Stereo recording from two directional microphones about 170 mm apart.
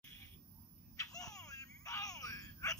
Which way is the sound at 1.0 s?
20° left (ahead or behind).